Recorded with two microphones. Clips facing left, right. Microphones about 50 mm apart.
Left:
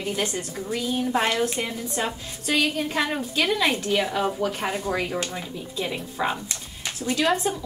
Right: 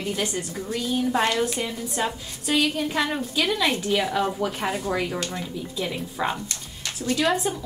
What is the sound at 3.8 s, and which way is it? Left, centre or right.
Speech, centre.